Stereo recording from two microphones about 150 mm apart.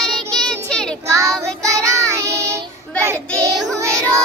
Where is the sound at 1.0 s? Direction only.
20° right (ahead or behind).